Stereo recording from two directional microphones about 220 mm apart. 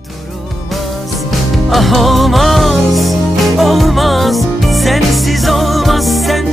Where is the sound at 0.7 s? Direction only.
Centre (ahead or behind).